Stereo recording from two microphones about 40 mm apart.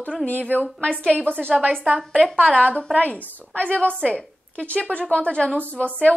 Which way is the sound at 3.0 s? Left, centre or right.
Left.